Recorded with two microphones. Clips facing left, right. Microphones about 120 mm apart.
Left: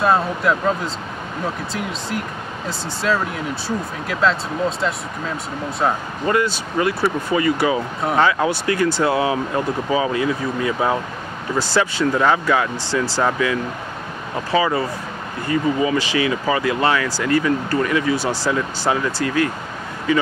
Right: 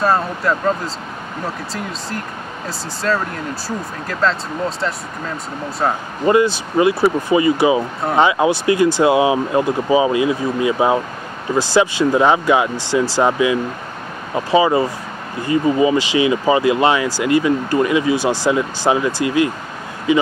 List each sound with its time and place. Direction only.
0.0 s speech: centre (ahead or behind)
6.2 s speech: 20° right (ahead or behind)